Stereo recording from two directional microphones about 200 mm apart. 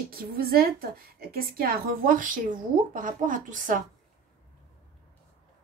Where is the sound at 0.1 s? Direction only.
50° right (ahead or behind).